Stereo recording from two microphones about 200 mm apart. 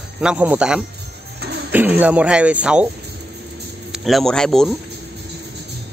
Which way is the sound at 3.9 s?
Centre (ahead or behind).